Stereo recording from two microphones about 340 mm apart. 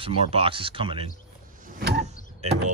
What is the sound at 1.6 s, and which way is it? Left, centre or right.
Power windows, right.